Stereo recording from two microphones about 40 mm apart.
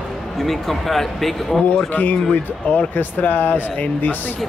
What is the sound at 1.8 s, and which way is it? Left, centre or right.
Speech, left.